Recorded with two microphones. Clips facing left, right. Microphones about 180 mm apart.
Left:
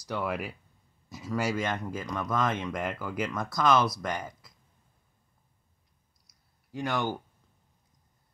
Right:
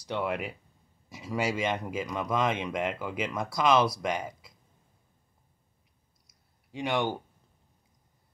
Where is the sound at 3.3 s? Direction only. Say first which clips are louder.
Right 1 dB; 30° right (ahead or behind).